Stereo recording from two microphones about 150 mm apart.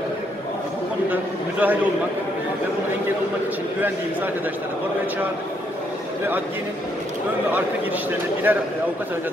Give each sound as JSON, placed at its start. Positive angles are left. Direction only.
{"t": 1.1, "sound": "a man's voice", "side_deg": -10}
{"t": 8.5, "sound": "a man's voice", "side_deg": -10}